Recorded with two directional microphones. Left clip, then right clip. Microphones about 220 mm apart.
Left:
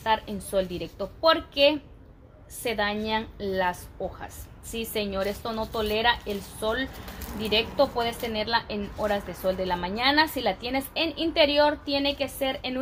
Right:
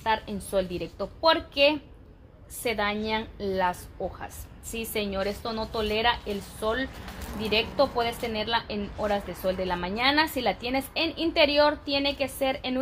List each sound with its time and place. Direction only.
0.0 s a woman's voice: 15° right (ahead or behind)